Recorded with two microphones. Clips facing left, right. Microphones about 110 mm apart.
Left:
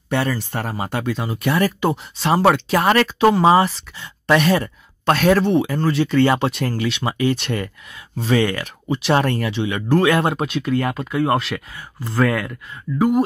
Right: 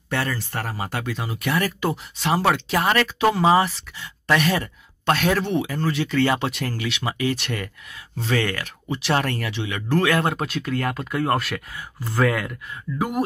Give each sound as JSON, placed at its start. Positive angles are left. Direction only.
{"t": 0.1, "sound": "speech", "side_deg": 20}
{"t": 10.4, "sound": "speech", "side_deg": 5}